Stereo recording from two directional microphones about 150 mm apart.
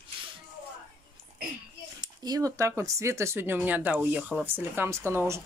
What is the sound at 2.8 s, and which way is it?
Speech, 20° right (ahead or behind).